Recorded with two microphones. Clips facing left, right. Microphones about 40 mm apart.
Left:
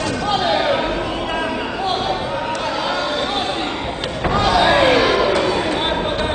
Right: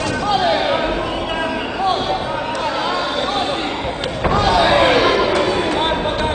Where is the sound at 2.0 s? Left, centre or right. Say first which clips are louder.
Right 1 dB; centre.